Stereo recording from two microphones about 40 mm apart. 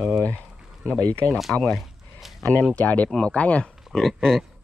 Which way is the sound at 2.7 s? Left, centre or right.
Left.